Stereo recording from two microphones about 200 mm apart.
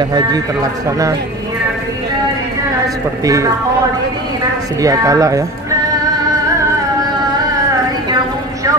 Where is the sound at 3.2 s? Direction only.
15° right (ahead or behind).